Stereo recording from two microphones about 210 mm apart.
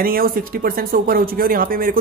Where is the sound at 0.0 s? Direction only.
45° right (ahead or behind).